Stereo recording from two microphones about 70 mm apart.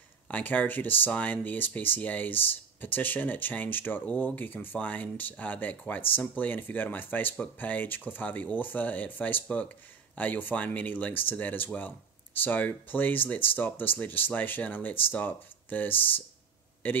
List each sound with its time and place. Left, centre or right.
0.3 s speech: left